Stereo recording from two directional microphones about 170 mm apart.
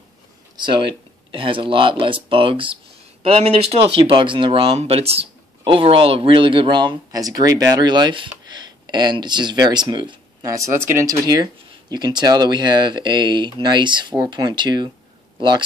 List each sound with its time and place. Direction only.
0.6 s speech: 30° right (ahead or behind)